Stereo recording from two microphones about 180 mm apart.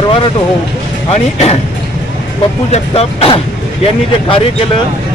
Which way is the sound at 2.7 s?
35° left (ahead or behind).